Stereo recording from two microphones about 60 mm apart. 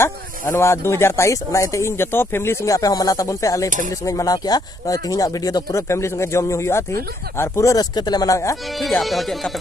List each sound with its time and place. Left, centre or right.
0.6 s speech: left
2.6 s speech: left
5.9 s speech: left
7.6 s speech: left
8.8 s speech: centre